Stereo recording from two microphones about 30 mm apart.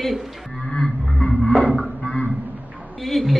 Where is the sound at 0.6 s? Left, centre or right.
Centre.